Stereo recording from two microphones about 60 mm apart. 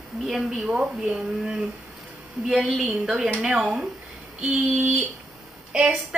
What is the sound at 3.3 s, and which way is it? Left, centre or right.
Speech, right.